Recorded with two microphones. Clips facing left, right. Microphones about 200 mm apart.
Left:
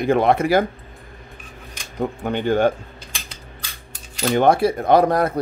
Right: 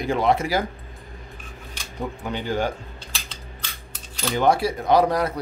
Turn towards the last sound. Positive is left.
turn(degrees=55)  # may be behind; listen again after turning